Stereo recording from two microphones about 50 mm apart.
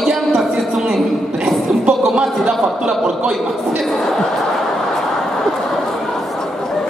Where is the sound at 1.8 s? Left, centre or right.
Centre.